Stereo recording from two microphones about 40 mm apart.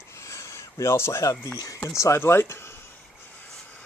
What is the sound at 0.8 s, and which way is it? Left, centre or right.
Speech, left.